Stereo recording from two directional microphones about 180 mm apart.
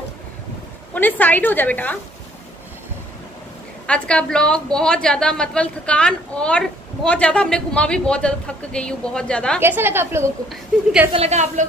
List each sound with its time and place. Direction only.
0.9 s a woman's voice: 10° left (ahead or behind)
3.8 s a woman's voice: 5° left (ahead or behind)
9.6 s a woman's voice: 10° right (ahead or behind)
11.1 s a woman's voice: 40° right (ahead or behind)